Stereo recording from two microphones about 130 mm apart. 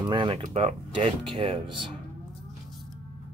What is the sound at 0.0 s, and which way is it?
Speech, 35° right (ahead or behind).